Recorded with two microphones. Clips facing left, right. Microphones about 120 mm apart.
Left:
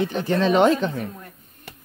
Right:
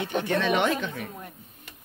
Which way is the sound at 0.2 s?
35° left (ahead or behind).